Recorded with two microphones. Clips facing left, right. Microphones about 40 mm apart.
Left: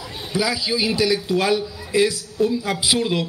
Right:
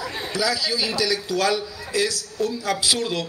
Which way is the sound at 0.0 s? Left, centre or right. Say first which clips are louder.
Right 4 dB; right.